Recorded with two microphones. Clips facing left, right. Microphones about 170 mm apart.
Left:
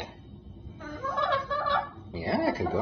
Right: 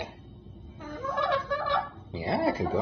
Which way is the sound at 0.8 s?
15° right (ahead or behind).